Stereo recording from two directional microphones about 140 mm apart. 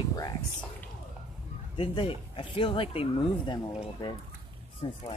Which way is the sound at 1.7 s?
40° left (ahead or behind).